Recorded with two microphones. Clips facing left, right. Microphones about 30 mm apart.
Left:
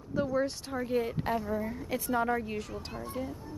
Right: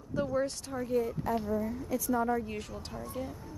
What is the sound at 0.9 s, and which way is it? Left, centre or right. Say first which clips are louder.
Speech: even; left.